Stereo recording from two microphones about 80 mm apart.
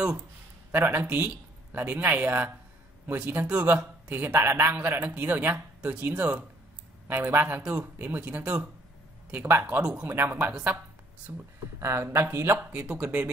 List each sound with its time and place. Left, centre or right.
0.7 s speech: right
3.6 s speech: right
4.7 s speech: centre
11.3 s speech: right
11.8 s speech: right
12.5 s speech: centre